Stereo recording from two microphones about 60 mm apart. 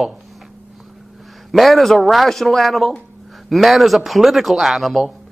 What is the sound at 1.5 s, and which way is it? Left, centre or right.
A man's voice, centre.